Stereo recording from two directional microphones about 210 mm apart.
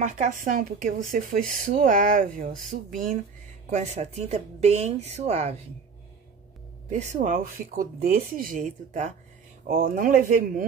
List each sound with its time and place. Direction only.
0.0 s speech: 35° right (ahead or behind)
6.9 s speech: 35° right (ahead or behind)